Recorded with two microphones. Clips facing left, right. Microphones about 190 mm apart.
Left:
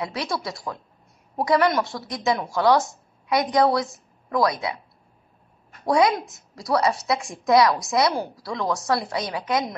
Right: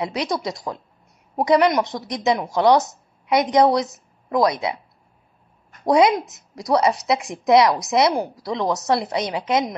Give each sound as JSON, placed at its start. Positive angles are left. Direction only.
{"t": 0.0, "sound": "a woman's voice", "side_deg": -20}
{"t": 5.9, "sound": "a woman's voice", "side_deg": -20}